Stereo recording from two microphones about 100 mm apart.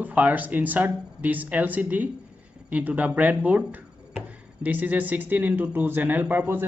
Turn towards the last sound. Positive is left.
turn(degrees=-20)  # may be behind; listen again after turning